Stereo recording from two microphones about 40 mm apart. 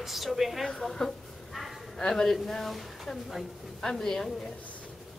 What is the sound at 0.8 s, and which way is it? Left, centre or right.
A woman's voice, centre.